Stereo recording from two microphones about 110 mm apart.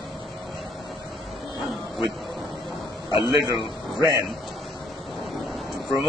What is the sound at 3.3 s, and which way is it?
Speech, 35° right (ahead or behind).